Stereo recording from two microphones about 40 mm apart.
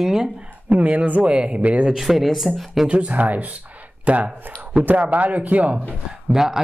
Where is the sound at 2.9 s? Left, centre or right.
Right.